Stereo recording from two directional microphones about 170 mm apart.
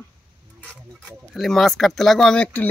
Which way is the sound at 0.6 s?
5° left (ahead or behind).